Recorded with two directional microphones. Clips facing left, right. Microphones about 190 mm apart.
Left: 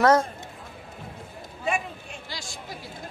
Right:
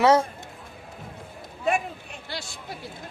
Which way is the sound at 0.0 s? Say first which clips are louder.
Right 1 dB; 10° right (ahead or behind).